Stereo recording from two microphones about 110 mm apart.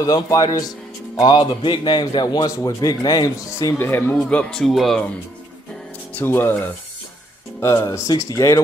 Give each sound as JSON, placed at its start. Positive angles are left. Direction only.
{"t": 0.0, "sound": "a man's voice", "side_deg": 30}
{"t": 6.1, "sound": "a man's voice", "side_deg": 20}